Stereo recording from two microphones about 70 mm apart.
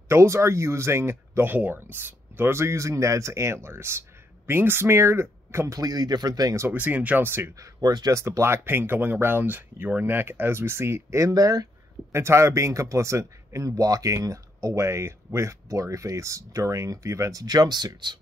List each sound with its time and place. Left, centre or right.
0.1 s speech: right
5.8 s speech: right
6.7 s speech: right
7.2 s speech: right
7.5 s speech: right
8.1 s speech: right
12.1 s a man's voice: right